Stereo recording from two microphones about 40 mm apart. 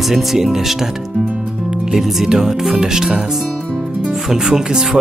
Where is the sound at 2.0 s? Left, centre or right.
Centre.